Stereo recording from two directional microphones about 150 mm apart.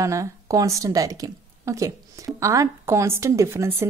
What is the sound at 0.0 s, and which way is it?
A woman's voice, 20° right (ahead or behind).